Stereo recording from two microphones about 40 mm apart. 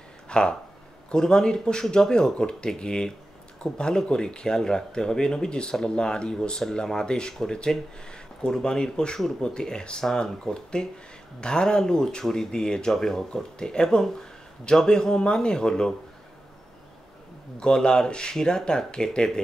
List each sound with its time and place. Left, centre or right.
0.3 s speech: left
12.9 s speech: centre
13.3 s speech: centre
17.6 s speech: centre